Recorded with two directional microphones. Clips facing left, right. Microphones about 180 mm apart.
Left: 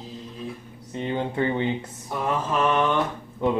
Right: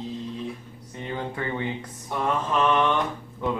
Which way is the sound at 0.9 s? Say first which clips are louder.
Left 6 dB; 25° left (ahead or behind).